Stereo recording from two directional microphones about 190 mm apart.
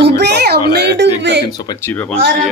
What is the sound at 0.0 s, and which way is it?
Music, 60° right (ahead or behind).